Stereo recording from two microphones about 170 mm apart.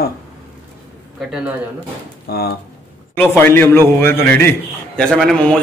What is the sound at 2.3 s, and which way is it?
Speech, 65° left (ahead or behind).